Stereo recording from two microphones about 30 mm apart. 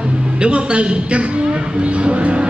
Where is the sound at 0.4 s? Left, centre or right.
Right.